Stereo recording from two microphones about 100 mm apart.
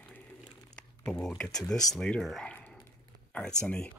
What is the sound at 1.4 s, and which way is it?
Speech, 5° left (ahead or behind).